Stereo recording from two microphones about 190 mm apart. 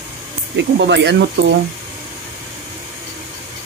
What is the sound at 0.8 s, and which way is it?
Speech, 65° right (ahead or behind).